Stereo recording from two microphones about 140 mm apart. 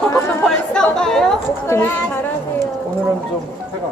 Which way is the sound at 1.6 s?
20° left (ahead or behind).